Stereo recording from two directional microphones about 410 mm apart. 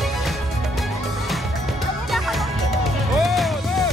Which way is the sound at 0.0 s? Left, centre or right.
Centre.